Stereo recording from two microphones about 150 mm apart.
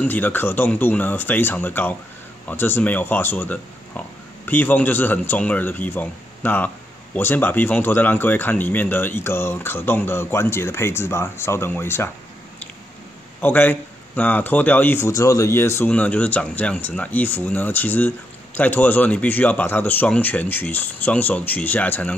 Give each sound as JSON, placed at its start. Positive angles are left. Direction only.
{"t": 0.0, "sound": "speech", "side_deg": 10}
{"t": 13.4, "sound": "speech", "side_deg": 10}